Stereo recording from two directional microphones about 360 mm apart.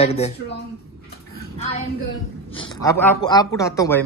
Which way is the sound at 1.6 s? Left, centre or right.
Centre.